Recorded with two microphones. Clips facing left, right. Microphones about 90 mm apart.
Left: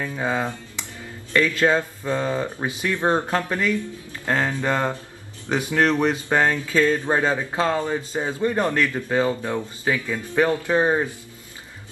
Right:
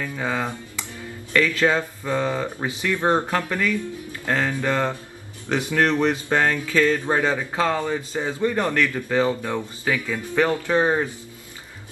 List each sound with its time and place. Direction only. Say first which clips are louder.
0.0 s speech: left 1 dB; 20° left (ahead or behind)